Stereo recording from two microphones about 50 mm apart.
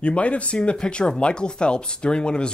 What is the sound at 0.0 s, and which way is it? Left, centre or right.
Speech, left.